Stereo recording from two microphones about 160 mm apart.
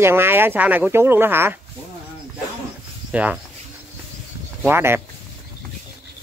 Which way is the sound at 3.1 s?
10° right (ahead or behind).